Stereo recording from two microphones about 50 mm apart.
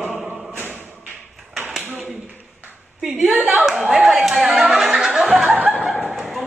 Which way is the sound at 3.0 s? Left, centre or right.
Centre.